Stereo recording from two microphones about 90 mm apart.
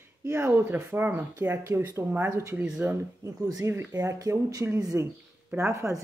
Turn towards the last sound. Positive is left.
turn(degrees=-35)  # may be behind; listen again after turning